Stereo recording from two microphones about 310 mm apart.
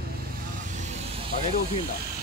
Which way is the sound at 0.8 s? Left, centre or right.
Right.